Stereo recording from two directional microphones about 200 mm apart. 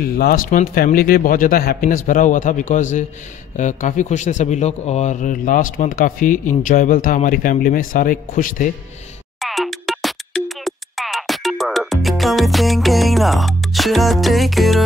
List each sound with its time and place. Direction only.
0.2 s a man's voice: 45° left (ahead or behind)
9.4 s music: centre (ahead or behind)